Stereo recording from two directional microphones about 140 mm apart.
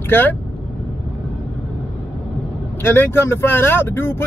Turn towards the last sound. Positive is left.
turn(degrees=15)  # may be behind; listen again after turning